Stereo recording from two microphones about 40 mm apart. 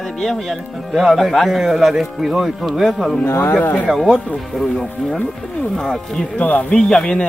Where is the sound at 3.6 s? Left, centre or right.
Left.